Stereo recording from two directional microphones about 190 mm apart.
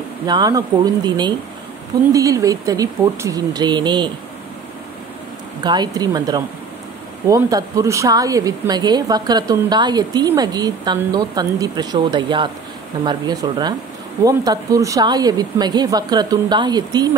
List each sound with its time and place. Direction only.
0.3 s speech: 20° right (ahead or behind)
5.6 s speech: 20° right (ahead or behind)